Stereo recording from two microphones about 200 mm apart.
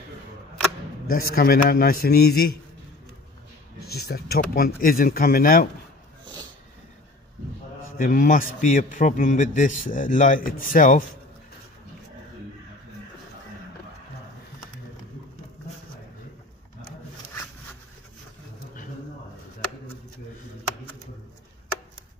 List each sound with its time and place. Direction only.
1.1 s speech: 50° left (ahead or behind)
3.8 s speech: 50° left (ahead or behind)
8.0 s a man's voice: 45° left (ahead or behind)